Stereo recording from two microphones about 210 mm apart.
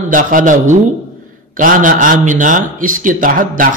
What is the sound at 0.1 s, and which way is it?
A man's voice, 40° right (ahead or behind).